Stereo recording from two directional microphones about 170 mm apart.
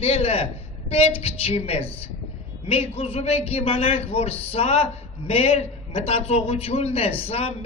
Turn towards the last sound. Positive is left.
turn(degrees=35)  # may be behind; listen again after turning